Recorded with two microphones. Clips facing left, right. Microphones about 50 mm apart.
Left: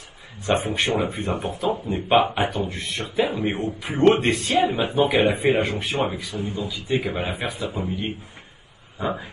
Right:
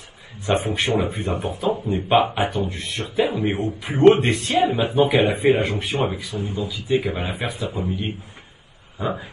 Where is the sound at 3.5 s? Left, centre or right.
Left.